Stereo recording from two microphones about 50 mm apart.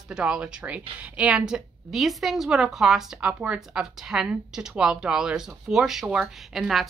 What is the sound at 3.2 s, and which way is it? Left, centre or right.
A woman's voice, centre.